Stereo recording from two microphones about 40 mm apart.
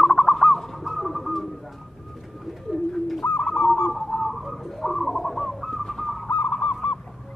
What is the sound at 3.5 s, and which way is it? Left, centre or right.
Goose, left.